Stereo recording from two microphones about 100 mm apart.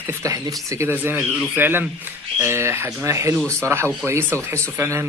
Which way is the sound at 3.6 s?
25° right (ahead or behind).